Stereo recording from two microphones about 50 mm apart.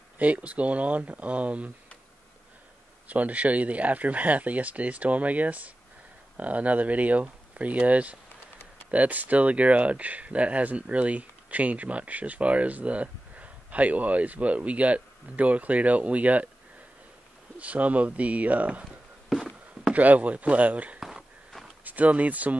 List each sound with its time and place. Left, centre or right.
0.2 s speech: right
3.1 s speech: right
17.6 s speech: right
19.2 s a sound: centre
19.9 s speech: right
21.0 s a sound: centre
21.8 s speech: right